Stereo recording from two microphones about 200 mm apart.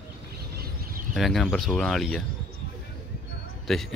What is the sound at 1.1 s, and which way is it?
Speech, centre (ahead or behind).